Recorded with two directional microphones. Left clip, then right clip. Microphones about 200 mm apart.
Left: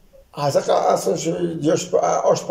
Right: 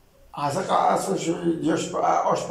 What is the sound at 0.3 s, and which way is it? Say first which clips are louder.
A man's voice: left 5 dB; 50° left (ahead or behind).